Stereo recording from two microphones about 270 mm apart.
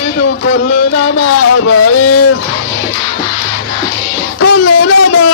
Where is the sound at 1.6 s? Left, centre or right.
Left.